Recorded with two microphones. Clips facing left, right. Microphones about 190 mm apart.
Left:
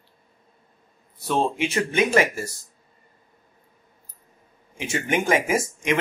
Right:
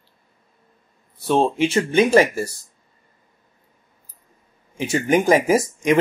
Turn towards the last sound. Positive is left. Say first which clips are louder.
# right 6 dB
turn(degrees=-35)  # may be behind; listen again after turning